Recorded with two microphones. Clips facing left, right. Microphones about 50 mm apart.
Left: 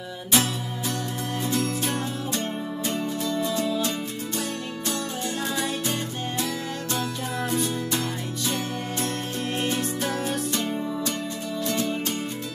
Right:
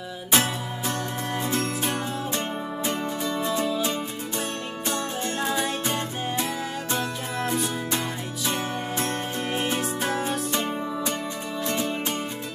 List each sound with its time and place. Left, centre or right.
0.3 s music: right
1.8 s music: centre
4.8 s music: right
7.5 s music: centre